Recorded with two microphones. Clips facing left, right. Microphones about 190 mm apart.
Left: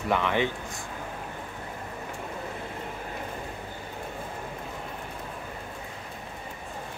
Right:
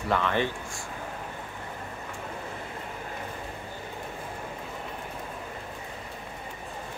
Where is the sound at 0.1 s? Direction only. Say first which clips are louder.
Left 1 dB; 15° left (ahead or behind).